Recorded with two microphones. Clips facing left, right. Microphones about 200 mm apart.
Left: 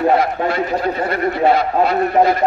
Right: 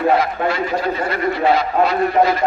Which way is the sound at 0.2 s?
55° left (ahead or behind).